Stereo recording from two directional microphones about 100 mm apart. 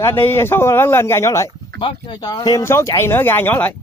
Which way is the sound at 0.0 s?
25° left (ahead or behind).